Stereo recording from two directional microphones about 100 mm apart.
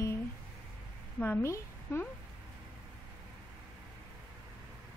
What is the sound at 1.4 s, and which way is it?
Speech, 25° left (ahead or behind).